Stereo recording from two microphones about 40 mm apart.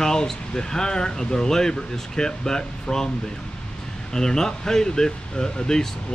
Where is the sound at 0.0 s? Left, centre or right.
Centre.